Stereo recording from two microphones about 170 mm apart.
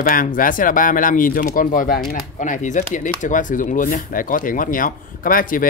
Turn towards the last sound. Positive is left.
turn(degrees=55)  # may be behind; listen again after turning